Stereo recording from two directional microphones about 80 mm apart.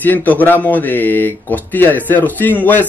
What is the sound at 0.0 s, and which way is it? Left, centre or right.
Speech, left.